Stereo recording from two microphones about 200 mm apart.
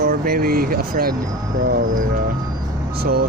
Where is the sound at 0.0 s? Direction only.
50° right (ahead or behind).